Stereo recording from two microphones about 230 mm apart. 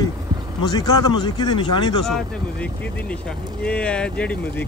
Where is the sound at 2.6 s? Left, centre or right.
Centre.